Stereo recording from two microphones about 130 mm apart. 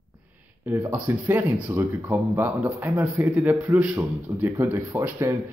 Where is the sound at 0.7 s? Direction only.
15° right (ahead or behind).